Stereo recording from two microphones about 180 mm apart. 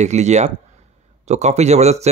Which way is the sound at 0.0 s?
40° right (ahead or behind).